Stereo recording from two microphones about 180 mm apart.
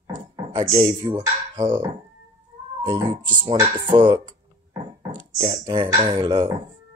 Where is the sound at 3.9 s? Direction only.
25° right (ahead or behind).